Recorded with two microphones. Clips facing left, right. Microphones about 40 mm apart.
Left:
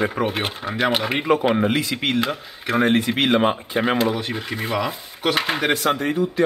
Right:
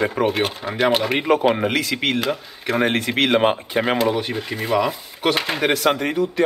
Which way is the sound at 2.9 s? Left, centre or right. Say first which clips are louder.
Even; right.